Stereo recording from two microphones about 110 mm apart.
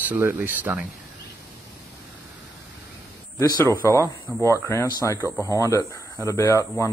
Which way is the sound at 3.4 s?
25° left (ahead or behind).